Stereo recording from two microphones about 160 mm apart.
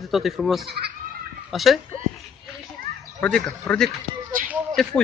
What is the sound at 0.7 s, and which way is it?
Speech, 80° right.